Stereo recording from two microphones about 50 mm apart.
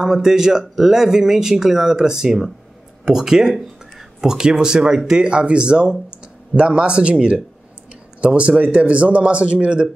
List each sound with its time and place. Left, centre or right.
0.0 s speech: centre